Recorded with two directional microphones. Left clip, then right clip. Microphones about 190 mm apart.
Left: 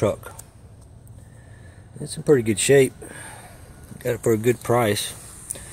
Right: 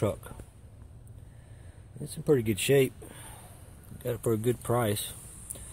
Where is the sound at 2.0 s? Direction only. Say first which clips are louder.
Left 8 dB; centre (ahead or behind).